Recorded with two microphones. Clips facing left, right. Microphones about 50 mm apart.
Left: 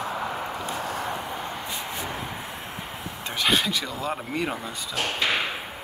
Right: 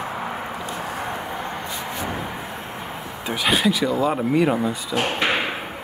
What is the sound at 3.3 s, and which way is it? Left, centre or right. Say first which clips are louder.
Speech: right 4 dB; centre.